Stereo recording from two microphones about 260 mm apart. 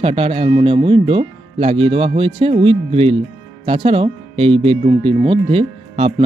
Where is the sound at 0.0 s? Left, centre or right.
Right.